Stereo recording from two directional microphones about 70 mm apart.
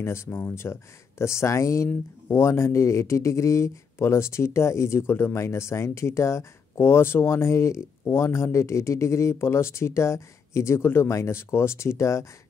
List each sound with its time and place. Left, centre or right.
0.0 s speech: left